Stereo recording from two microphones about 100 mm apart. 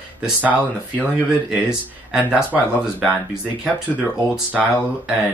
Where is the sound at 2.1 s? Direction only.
10° right (ahead or behind).